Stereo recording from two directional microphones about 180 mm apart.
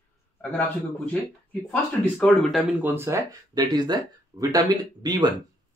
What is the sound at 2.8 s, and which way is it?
A man's voice, 15° right (ahead or behind).